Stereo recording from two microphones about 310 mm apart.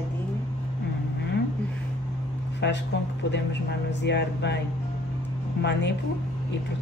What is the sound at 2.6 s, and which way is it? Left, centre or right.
Speech, left.